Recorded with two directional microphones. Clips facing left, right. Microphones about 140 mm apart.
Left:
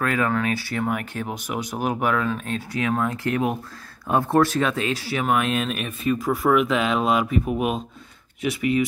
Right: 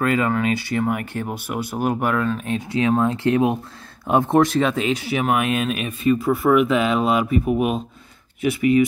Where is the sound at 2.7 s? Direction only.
25° right (ahead or behind); by 7.8 s centre (ahead or behind).